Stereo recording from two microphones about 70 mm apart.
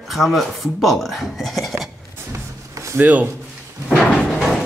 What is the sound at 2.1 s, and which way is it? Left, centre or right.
Music, right.